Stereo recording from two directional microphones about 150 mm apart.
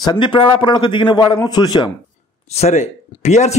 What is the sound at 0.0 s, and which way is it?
A man's voice, 30° left (ahead or behind).